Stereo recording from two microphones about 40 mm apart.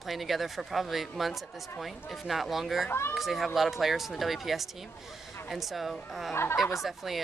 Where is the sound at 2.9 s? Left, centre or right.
Left.